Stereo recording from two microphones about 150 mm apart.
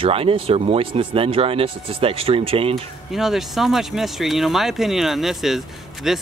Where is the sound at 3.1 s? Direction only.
Centre (ahead or behind).